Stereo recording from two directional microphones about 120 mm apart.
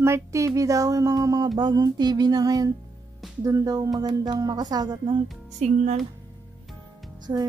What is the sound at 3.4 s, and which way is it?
Speech, 30° right (ahead or behind).